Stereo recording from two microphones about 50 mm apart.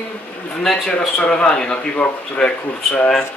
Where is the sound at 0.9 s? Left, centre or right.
Left.